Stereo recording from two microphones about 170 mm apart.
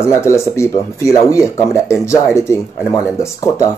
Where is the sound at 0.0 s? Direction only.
15° left (ahead or behind).